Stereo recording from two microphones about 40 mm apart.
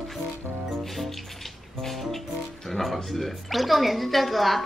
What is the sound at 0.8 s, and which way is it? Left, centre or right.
Music, centre.